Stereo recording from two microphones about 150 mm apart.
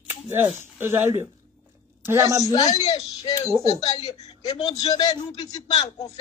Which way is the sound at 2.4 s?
25° left (ahead or behind).